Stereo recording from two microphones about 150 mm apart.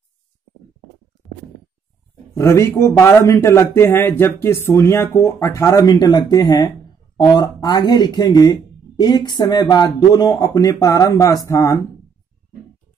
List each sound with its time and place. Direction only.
2.3 s speech: 20° left (ahead or behind)